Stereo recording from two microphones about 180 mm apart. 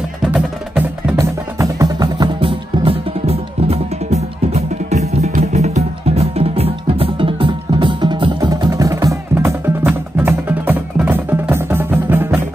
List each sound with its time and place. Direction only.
0.2 s music: 5° right (ahead or behind)
1.1 s music: 20° right (ahead or behind)